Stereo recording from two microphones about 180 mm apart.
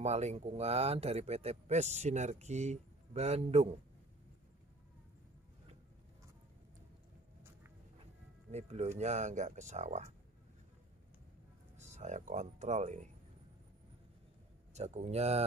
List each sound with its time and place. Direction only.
0.0 s speech: 35° right (ahead or behind)
8.5 s speech: 35° right (ahead or behind)
11.7 s speech: 40° right (ahead or behind)
14.7 s speech: 40° right (ahead or behind)